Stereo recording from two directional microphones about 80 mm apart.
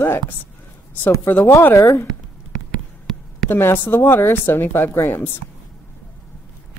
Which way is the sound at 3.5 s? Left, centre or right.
Left.